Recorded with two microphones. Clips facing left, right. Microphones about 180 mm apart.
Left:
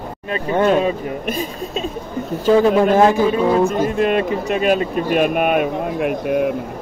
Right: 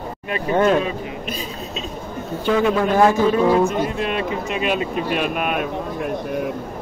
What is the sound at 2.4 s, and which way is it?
Speech, 35° left (ahead or behind).